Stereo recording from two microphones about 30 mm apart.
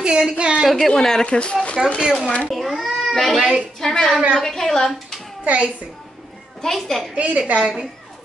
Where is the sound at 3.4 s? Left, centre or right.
Centre.